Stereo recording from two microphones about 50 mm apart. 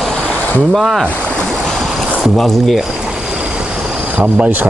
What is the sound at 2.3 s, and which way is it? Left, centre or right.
Speech, centre.